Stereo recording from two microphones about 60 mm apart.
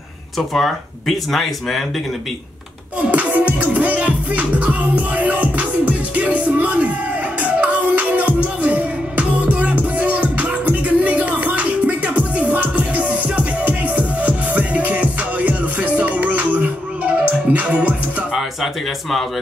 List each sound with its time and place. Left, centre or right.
0.4 s speech: centre
3.0 s music: right
18.3 s speech: centre